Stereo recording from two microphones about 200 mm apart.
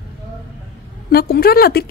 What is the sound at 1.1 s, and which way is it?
Speech, 50° left (ahead or behind).